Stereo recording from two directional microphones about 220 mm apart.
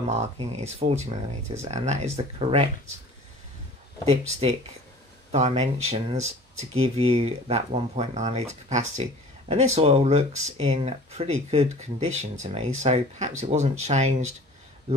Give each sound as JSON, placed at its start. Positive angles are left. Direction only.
{"t": 0.1, "sound": "speech", "side_deg": -30}
{"t": 4.0, "sound": "speech", "side_deg": -25}